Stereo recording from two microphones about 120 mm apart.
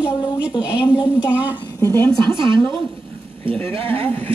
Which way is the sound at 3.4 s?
15° left (ahead or behind).